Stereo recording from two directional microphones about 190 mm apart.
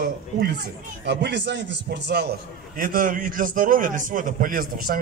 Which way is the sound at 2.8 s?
45° right (ahead or behind).